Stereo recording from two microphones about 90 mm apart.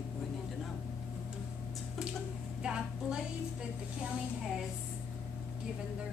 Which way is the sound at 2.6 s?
10° right (ahead or behind).